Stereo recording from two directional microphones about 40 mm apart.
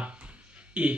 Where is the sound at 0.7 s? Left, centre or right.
Right.